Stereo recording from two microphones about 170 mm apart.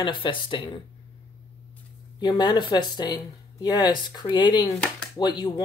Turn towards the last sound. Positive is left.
turn(degrees=25)  # may be behind; listen again after turning